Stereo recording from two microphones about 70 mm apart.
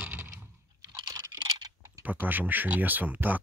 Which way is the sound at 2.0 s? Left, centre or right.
Right.